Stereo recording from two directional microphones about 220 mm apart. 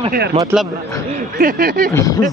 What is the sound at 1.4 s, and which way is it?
Speech, 40° right (ahead or behind).